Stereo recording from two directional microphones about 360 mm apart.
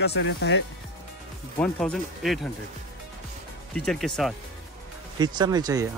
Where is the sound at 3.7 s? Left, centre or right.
Centre.